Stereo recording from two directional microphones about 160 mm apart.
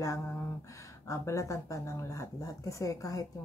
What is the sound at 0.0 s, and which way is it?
Speech, 20° left (ahead or behind).